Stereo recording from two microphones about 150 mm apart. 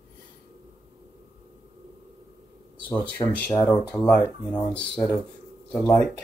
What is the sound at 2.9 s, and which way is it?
Speech, 10° left (ahead or behind).